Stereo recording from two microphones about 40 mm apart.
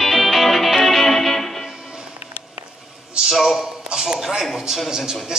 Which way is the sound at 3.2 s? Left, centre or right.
Right.